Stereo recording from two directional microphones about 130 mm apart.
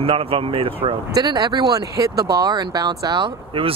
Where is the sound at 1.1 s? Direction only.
30° right (ahead or behind).